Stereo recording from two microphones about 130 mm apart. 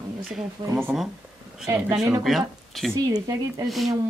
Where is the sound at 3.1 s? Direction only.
30° right (ahead or behind).